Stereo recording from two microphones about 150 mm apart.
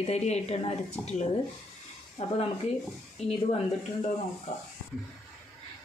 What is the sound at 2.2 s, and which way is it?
Speech, 45° left (ahead or behind).